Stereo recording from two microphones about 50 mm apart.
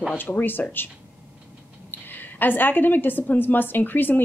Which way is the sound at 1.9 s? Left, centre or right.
Left.